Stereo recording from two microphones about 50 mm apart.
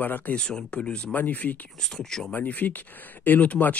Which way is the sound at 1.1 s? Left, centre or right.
Left.